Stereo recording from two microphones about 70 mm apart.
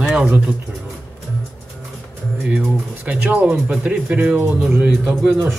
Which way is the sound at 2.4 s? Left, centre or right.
Centre.